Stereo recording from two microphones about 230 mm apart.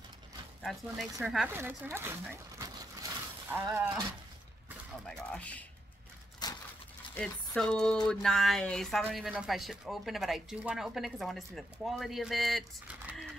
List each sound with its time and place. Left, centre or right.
0.6 s speech: centre
5.0 s speech: centre
6.4 s a sound: centre
7.2 s speech: centre